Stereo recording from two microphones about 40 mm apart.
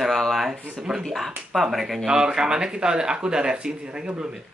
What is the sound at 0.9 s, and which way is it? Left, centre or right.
Speech, centre.